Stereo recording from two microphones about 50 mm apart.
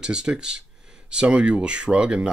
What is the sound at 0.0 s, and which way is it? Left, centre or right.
Speech, centre.